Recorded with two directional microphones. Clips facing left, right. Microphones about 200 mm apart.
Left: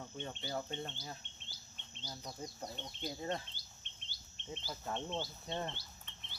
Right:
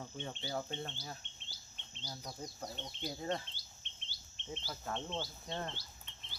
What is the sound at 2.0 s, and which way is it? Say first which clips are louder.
Speech: even; centre (ahead or behind).